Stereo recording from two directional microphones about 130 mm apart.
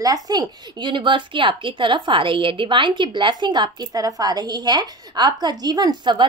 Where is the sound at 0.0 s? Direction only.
30° right (ahead or behind).